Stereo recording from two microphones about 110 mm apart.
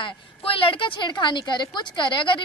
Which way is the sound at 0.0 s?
55° left (ahead or behind).